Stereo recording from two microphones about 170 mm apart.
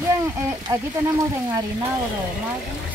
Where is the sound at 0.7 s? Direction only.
20° right (ahead or behind).